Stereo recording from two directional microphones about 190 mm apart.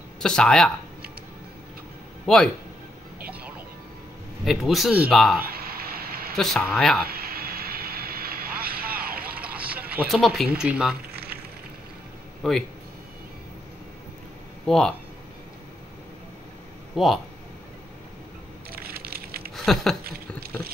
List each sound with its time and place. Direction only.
0.2 s speech: 5° left (ahead or behind)
2.2 s speech: centre (ahead or behind)
4.5 s speech: centre (ahead or behind)
5.4 s a sound: 50° right (ahead or behind)
6.3 s speech: centre (ahead or behind)
7.1 s vehicle: 50° right (ahead or behind)
9.9 s speech: centre (ahead or behind)
12.4 s speech: centre (ahead or behind)
14.7 s speech: centre (ahead or behind)
16.9 s speech: centre (ahead or behind)
18.7 s crushing: 50° right (ahead or behind)
19.5 s a sound: centre (ahead or behind)
20.0 s a sound: 50° right (ahead or behind)